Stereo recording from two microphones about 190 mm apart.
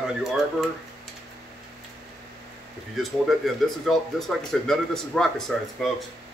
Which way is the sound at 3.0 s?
Centre (ahead or behind).